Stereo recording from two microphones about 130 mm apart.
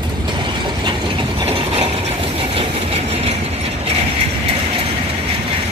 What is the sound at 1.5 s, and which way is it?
Ratchet, 45° right (ahead or behind).